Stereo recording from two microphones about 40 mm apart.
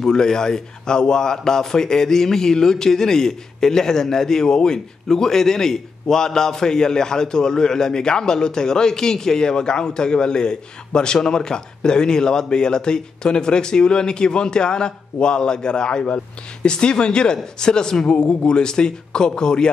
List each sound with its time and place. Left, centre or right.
0.0 s a man's voice: centre